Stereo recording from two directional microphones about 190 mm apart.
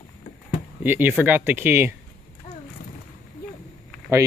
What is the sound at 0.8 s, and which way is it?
Speech, 10° right (ahead or behind).